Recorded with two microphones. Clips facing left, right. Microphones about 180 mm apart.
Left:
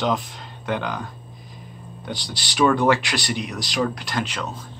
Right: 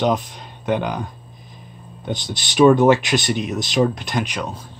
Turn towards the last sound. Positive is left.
turn(degrees=-15)  # may be behind; listen again after turning